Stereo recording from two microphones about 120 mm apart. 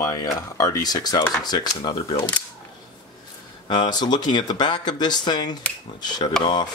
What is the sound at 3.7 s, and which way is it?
Speech, 35° left (ahead or behind).